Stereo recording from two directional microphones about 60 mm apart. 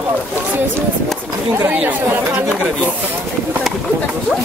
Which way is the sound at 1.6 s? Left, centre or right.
Right.